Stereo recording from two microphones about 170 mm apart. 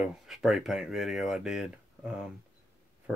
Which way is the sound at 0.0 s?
Centre (ahead or behind).